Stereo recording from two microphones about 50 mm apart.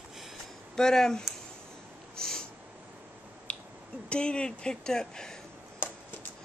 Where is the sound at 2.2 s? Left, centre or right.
Centre.